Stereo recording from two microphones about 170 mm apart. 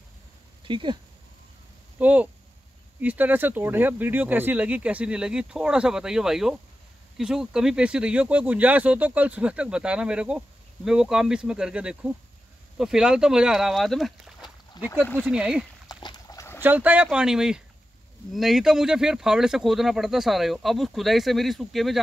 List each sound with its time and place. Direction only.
0.7 s speech: 30° right (ahead or behind)
2.0 s speech: 10° right (ahead or behind)
14.8 s a sound: 25° left (ahead or behind)
15.1 s speech: 10° right (ahead or behind)
15.9 s a sound: 25° left (ahead or behind)
16.6 s speech: 10° right (ahead or behind)